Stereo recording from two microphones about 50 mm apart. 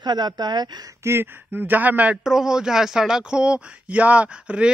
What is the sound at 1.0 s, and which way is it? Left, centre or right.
Speech, right.